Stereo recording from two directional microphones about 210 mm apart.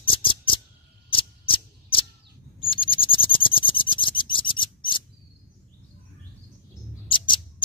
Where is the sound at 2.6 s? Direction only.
25° left (ahead or behind).